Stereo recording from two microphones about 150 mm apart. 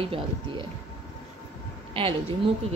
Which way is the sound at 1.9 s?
40° right (ahead or behind).